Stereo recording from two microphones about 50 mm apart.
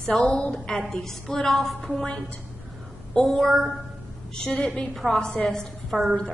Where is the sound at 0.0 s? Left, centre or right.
Centre.